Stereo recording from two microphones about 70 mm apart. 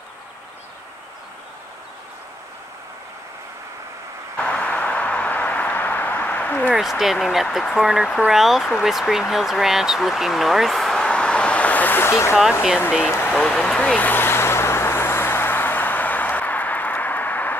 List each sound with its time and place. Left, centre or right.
4.4 s a sound: centre
6.7 s speech: centre; by 12.4 s left
13.3 s speech: centre
14.1 s vehicle: left